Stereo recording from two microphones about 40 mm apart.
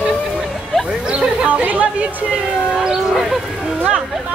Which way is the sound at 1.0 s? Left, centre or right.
Right.